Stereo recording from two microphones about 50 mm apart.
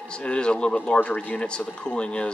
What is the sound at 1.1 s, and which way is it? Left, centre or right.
Speech, left.